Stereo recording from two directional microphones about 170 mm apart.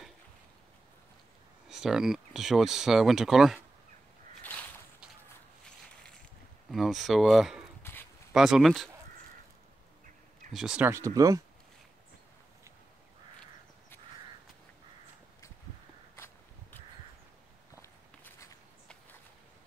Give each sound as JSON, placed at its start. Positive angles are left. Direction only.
{"t": 1.7, "sound": "speech", "side_deg": -5}
{"t": 4.4, "sound": "a sound", "side_deg": 10}
{"t": 6.7, "sound": "speech", "side_deg": 0}
{"t": 7.8, "sound": "a sound", "side_deg": 15}
{"t": 8.3, "sound": "speech", "side_deg": -5}
{"t": 10.5, "sound": "speech", "side_deg": -5}
{"t": 17.8, "sound": "walk", "side_deg": 15}